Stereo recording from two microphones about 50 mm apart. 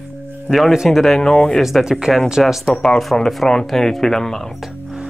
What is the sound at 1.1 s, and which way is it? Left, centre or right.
Speech, centre.